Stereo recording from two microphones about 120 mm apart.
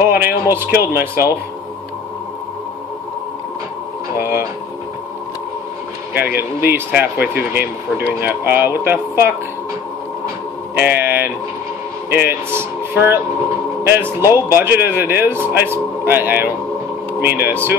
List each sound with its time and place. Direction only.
0.0 s a man's voice: 20° right (ahead or behind)
6.1 s a man's voice: 20° right (ahead or behind)
10.8 s a man's voice: 15° right (ahead or behind)